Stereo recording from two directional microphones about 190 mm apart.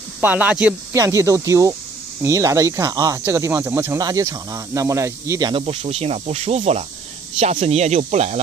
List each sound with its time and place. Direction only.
0.2 s speech: 10° right (ahead or behind)
5.5 s speech: 30° right (ahead or behind)